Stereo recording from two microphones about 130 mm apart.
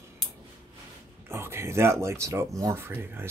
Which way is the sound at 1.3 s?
20° right (ahead or behind).